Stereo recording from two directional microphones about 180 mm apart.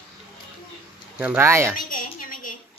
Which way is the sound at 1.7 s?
50° left (ahead or behind).